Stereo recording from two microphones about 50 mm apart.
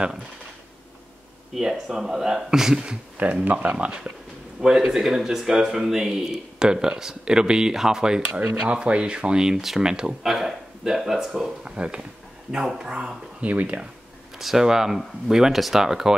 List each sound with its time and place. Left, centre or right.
1.5 s speech: centre
3.4 s speech: right
9.4 s speech: centre
11.6 s speech: right
13.4 s speech: right
14.4 s speech: centre